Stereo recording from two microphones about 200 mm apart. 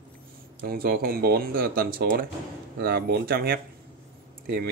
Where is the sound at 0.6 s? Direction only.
50° right (ahead or behind).